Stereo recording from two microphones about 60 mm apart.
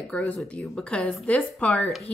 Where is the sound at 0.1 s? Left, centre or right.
Left.